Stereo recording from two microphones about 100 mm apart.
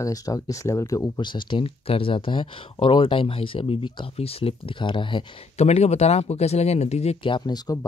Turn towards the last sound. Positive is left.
turn(degrees=45)  # may be behind; listen again after turning